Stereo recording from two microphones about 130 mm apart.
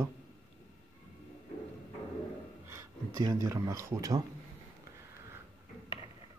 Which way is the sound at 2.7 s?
20° right (ahead or behind).